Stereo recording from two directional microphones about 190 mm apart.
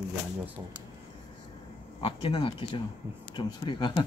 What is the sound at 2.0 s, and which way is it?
Speech, 30° left (ahead or behind).